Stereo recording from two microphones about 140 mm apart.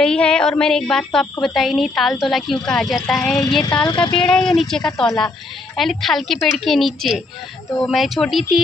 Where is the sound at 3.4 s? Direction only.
30° left (ahead or behind).